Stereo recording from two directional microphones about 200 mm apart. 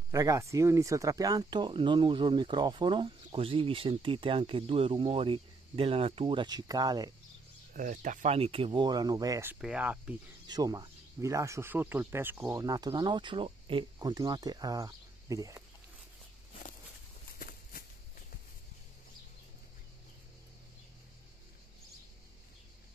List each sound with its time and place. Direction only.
0.1 s speech: 15° right (ahead or behind)
7.7 s speech: 40° right (ahead or behind); by 10.1 s 5° right (ahead or behind)
10.4 s speech: 20° right (ahead or behind)
17.4 s a sound: 45° left (ahead or behind)